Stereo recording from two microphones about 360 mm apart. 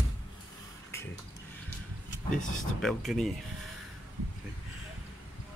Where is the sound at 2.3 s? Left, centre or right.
Centre.